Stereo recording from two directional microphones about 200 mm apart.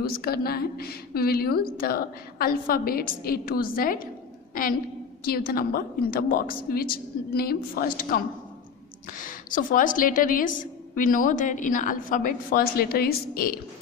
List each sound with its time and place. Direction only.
0.0 s a woman's voice: 50° left (ahead or behind)